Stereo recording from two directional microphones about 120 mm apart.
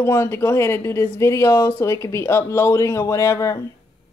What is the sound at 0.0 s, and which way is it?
Speech, 20° left (ahead or behind).